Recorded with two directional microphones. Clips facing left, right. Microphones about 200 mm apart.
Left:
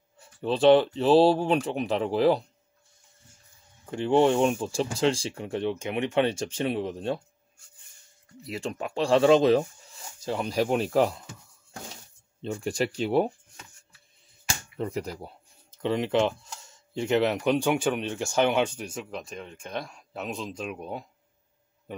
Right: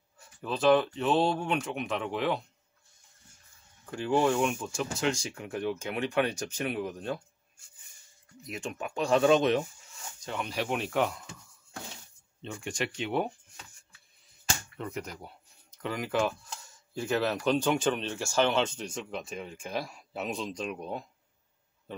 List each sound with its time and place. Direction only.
0.2 s speech: 30° left (ahead or behind)
3.8 s speech: 25° left (ahead or behind)
8.4 s speech: 30° left (ahead or behind)
12.4 s speech: 35° left (ahead or behind)
14.8 s speech: 30° left (ahead or behind); by 21.0 s 5° left (ahead or behind)